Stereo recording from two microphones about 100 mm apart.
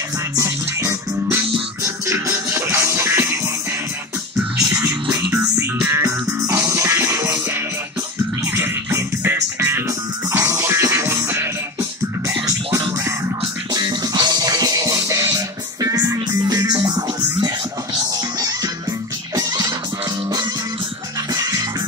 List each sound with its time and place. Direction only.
0.4 s music: 25° right (ahead or behind)
5.9 s music: 30° right (ahead or behind)
9.2 s music: 20° right (ahead or behind)
13.7 s music: 45° right (ahead or behind)
19.3 s music: 40° right (ahead or behind)
21.3 s music: 35° right (ahead or behind)